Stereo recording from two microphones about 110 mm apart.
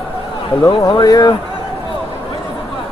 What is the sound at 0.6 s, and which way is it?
Speech, 40° left (ahead or behind).